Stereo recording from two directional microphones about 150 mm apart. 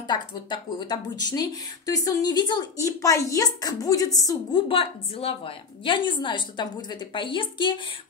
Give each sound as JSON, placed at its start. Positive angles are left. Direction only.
{"t": 0.1, "sound": "speech", "side_deg": 30}
{"t": 4.6, "sound": "a woman's voice", "side_deg": 35}